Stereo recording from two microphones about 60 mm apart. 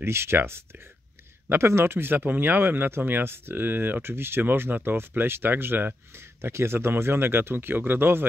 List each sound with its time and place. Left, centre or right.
0.0 s speech: right